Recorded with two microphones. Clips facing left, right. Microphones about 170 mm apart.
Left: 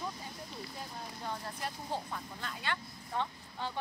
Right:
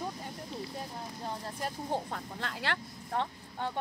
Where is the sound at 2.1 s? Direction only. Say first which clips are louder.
Right 3 dB; 70° right (ahead or behind).